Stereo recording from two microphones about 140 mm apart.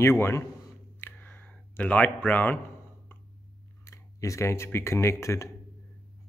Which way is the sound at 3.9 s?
25° left (ahead or behind).